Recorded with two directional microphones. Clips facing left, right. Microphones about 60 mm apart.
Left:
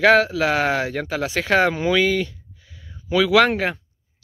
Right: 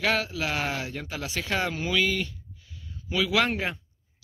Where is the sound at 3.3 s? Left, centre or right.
Left.